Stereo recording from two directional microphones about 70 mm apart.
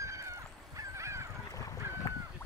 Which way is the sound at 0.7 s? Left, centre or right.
Right.